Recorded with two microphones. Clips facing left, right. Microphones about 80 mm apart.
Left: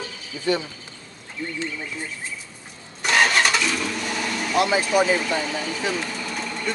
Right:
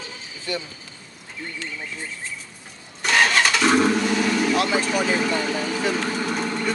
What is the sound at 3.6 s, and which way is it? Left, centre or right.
Vehicle, right.